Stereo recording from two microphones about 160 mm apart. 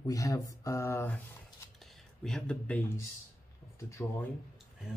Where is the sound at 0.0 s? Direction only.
20° left (ahead or behind).